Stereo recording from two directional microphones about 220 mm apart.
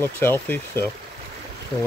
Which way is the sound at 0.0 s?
10° left (ahead or behind).